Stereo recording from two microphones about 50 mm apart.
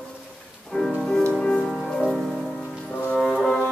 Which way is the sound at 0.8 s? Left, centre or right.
Centre.